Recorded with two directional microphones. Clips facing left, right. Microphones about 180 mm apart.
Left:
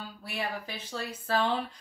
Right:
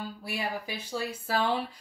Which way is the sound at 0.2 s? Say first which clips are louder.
Even; 10° right (ahead or behind).